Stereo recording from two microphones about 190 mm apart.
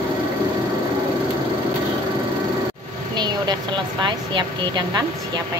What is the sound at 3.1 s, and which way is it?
Vehicle, 20° right (ahead or behind).